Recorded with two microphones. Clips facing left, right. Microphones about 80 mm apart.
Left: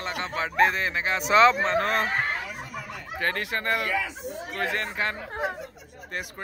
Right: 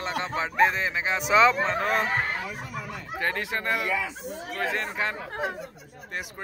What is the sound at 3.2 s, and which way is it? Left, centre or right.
Speech, centre.